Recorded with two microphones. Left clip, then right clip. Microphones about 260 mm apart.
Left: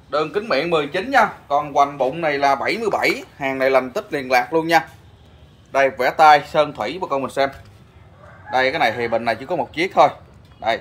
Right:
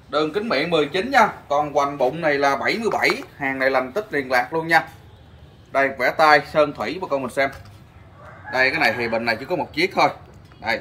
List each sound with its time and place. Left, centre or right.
0.1 s speech: centre
3.2 s a man's voice: left